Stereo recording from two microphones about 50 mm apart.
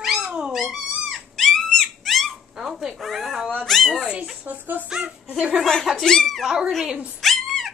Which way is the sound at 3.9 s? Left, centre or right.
Centre.